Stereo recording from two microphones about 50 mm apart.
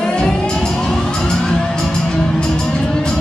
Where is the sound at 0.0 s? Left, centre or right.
Centre.